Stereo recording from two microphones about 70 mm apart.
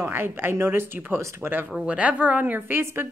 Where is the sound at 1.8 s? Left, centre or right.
Right.